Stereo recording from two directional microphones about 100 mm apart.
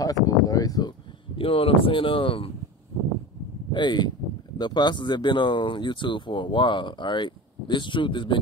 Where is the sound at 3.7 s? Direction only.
50° left (ahead or behind).